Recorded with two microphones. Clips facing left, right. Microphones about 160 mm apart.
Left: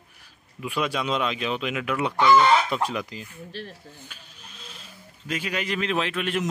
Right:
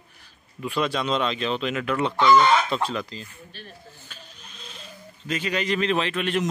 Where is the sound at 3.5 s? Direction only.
90° left.